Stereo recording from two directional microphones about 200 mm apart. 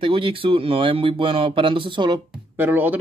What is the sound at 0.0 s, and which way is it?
Speech, 25° right (ahead or behind).